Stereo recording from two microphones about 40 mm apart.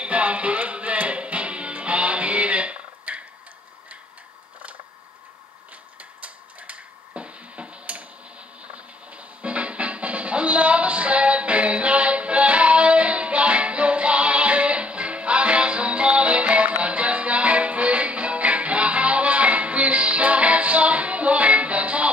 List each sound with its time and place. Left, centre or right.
0.0 s music: right
5.9 s a sound: right
8.6 s music: right